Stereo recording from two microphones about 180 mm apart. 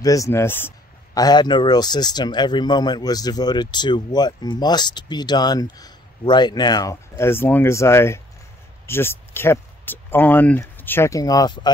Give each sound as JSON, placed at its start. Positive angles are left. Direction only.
{"t": 0.0, "sound": "speech", "side_deg": 20}